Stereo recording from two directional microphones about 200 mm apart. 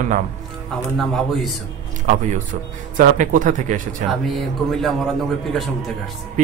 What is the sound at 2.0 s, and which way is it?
Speech, 40° right (ahead or behind).